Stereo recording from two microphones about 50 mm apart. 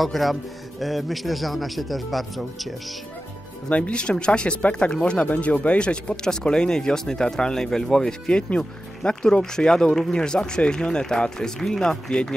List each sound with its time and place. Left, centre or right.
0.0 s a man's voice: centre
3.6 s speech: left
5.3 s speech: left